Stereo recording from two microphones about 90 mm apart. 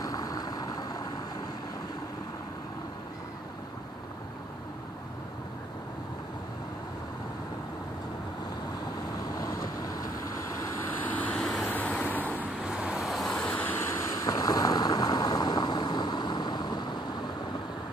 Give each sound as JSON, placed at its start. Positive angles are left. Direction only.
{"t": 0.0, "sound": "vehicle", "side_deg": 45}
{"t": 9.4, "sound": "vehicle", "side_deg": 45}
{"t": 11.3, "sound": "vehicle", "side_deg": 0}
{"t": 11.7, "sound": "vehicle", "side_deg": 15}
{"t": 12.6, "sound": "vehicle", "side_deg": -10}
{"t": 13.5, "sound": "vehicle", "side_deg": 20}
{"t": 14.2, "sound": "vehicle", "side_deg": 45}